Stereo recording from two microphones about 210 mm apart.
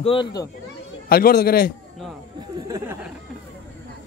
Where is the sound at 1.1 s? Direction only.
45° left (ahead or behind).